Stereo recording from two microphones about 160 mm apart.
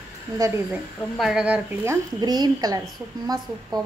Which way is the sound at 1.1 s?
5° right (ahead or behind).